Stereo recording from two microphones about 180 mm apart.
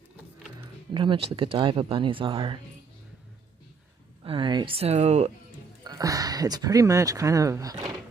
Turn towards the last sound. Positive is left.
turn(degrees=-20)  # may be behind; listen again after turning